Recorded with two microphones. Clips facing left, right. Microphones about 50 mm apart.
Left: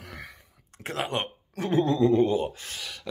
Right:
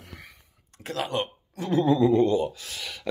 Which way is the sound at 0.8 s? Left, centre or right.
Left.